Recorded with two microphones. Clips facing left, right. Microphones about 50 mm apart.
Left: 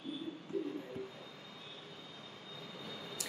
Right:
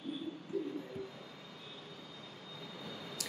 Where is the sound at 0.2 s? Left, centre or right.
Centre.